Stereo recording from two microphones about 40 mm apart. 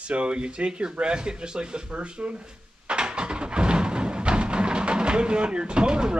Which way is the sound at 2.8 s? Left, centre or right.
Right.